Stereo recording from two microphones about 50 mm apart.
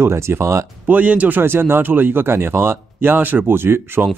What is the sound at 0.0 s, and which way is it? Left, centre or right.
Speech, right.